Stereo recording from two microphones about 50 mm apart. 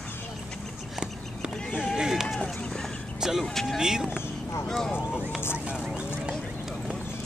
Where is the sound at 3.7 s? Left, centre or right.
Centre.